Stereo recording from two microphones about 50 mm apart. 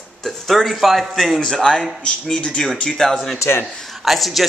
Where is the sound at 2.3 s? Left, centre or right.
Centre.